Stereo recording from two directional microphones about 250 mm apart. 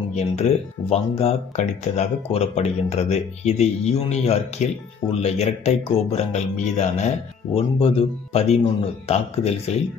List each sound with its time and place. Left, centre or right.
0.1 s speech: left